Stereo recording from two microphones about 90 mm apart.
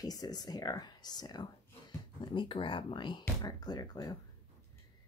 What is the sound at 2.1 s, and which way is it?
Speech, 70° left (ahead or behind).